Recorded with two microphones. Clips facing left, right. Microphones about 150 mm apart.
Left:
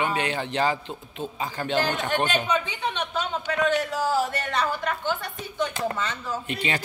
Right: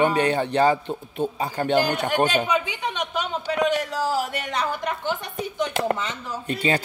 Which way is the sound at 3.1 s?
15° right (ahead or behind).